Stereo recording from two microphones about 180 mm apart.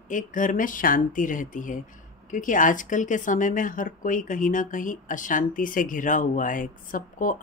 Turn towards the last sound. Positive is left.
turn(degrees=45)  # may be behind; listen again after turning